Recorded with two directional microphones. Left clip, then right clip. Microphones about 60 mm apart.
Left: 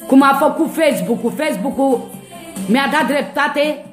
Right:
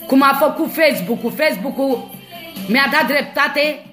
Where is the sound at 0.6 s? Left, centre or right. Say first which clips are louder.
Even; left.